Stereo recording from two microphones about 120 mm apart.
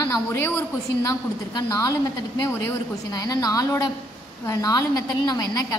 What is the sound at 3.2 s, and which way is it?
A woman's voice, 30° left (ahead or behind).